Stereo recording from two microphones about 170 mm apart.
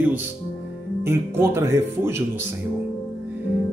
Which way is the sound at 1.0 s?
15° right (ahead or behind).